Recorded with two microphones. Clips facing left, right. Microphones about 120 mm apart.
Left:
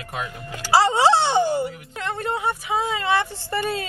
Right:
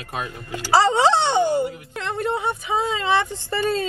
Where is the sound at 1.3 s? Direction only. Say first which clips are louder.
Right 1 dB; 20° right (ahead or behind).